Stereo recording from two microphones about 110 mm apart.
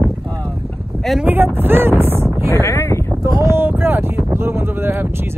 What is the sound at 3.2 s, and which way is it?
Speech, 25° right (ahead or behind).